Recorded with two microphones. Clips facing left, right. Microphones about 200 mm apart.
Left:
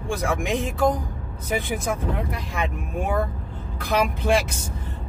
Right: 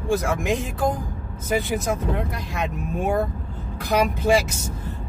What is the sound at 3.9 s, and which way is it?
Speech, centre (ahead or behind).